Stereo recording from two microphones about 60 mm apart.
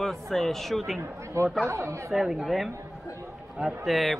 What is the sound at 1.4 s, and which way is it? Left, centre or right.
Speech, right.